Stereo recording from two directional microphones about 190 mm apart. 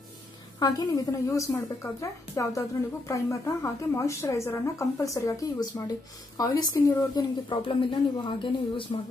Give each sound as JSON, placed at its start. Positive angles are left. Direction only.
{"t": 0.6, "sound": "a woman's voice", "side_deg": 20}